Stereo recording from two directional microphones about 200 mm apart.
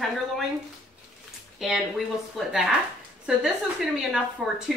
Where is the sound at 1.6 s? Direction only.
Centre (ahead or behind).